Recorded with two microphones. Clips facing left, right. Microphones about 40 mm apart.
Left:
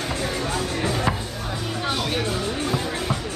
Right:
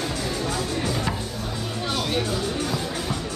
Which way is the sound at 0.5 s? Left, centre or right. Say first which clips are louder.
Left 1 dB; left.